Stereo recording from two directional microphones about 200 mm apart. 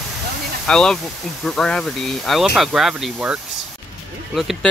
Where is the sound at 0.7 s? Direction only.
5° left (ahead or behind).